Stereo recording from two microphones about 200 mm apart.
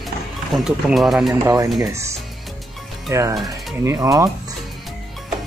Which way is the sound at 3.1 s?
15° right (ahead or behind).